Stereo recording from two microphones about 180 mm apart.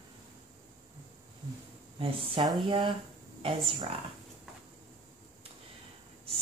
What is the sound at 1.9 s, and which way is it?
Speech, 30° right (ahead or behind).